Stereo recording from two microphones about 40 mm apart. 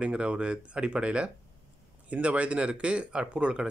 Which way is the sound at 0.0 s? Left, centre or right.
Right.